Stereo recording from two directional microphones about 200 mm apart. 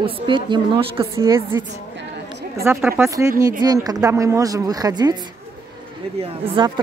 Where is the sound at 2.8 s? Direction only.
10° right (ahead or behind).